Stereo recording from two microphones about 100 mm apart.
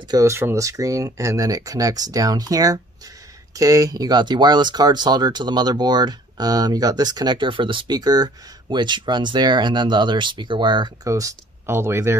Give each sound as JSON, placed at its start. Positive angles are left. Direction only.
{"t": 0.1, "sound": "speech", "side_deg": -30}
{"t": 11.1, "sound": "speech", "side_deg": -35}